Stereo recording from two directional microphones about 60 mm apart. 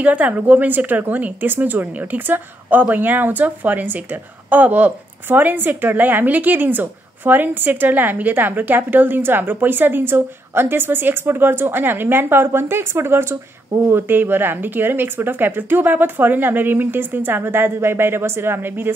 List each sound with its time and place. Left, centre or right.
0.0 s a woman's voice: right